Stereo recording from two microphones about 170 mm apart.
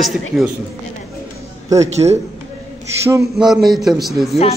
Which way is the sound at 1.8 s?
40° right (ahead or behind).